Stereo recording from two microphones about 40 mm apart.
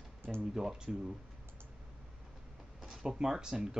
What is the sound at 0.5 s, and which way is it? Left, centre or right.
Speech, centre.